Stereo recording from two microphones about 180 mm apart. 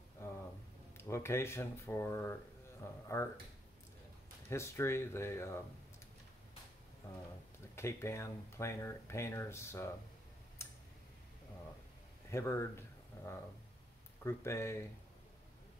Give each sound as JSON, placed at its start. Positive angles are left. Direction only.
{"t": 0.2, "sound": "a sound", "side_deg": 15}
{"t": 0.9, "sound": "speech", "side_deg": 15}
{"t": 4.5, "sound": "speech", "side_deg": 15}
{"t": 7.7, "sound": "speech", "side_deg": 15}
{"t": 10.6, "sound": "tick-tock", "side_deg": 15}
{"t": 12.3, "sound": "speech", "side_deg": 15}